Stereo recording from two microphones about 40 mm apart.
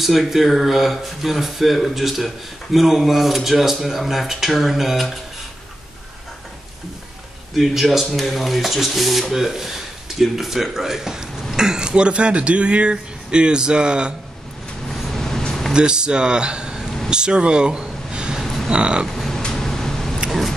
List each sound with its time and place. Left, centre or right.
0.0 s speech: centre
7.5 s speech: centre; by 14.1 s right
14.9 s vehicle: centre
15.7 s speech: right
18.4 s a sound: centre
18.7 s speech: right
19.0 s speech: centre
19.5 s a sound: centre
20.2 s vehicle: centre